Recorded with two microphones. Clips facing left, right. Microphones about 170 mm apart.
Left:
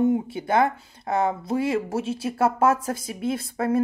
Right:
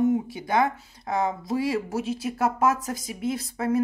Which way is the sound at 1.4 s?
25° left (ahead or behind).